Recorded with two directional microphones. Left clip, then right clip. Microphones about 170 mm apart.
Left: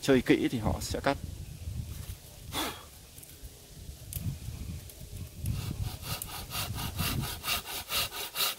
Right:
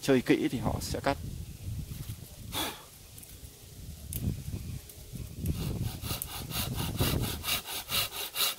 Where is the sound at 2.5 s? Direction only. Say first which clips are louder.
Even; 20° left (ahead or behind).